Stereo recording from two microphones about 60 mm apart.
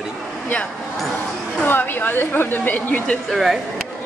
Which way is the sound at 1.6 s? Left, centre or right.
Left.